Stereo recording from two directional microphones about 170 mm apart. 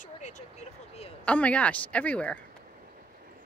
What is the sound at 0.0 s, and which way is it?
Vehicle, 45° left (ahead or behind).